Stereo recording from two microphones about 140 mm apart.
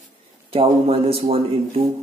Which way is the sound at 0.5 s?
45° right (ahead or behind).